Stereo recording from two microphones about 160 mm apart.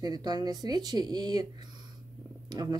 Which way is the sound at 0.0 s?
25° right (ahead or behind).